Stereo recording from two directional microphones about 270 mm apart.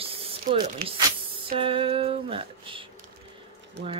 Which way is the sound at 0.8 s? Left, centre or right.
Centre.